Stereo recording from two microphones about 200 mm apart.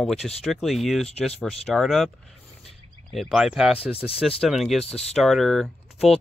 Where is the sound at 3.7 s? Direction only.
30° left (ahead or behind).